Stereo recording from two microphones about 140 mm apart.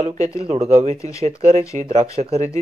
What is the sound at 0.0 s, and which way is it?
Speech, 55° right (ahead or behind).